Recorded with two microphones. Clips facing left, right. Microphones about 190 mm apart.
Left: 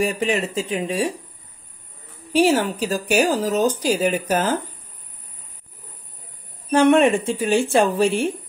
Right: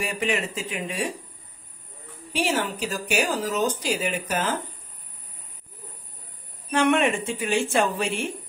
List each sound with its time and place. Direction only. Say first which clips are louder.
0.0 s speech: left 5 dB; 35° left (ahead or behind)
2.3 s speech: left 8 dB; 40° left (ahead or behind)
6.7 s speech: left 7 dB; 35° left (ahead or behind)